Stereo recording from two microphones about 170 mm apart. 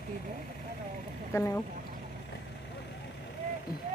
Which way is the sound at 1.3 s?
15° left (ahead or behind).